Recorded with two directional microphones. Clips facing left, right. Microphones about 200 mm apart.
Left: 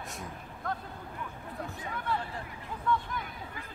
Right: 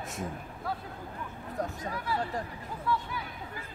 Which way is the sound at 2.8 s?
5° right (ahead or behind).